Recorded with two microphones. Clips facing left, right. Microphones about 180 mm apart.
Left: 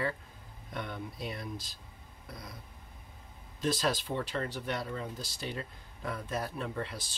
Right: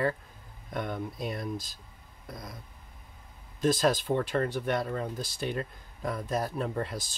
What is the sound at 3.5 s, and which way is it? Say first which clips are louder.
Speech: right 6 dB; 45° right (ahead or behind).